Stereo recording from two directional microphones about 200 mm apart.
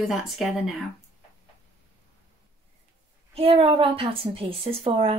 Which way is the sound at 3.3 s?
30° right (ahead or behind).